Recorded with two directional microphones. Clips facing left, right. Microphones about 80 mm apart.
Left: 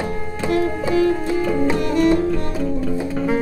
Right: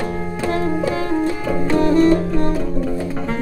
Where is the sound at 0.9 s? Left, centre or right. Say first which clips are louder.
Left 2 dB; right.